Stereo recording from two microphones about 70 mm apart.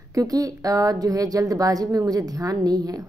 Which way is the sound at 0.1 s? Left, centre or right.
Right.